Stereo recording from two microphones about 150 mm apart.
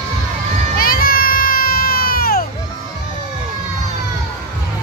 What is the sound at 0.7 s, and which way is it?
Music, 75° left (ahead or behind).